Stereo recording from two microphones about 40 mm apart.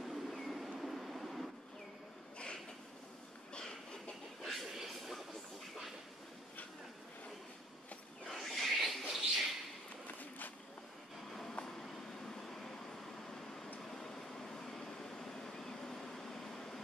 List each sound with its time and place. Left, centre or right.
0.0 s train: centre
3.6 s a sound: centre
4.7 s vehicle: centre
8.3 s wild animals: centre
9.0 s a sound: centre
11.6 s vehicle: left
13.8 s vehicle: centre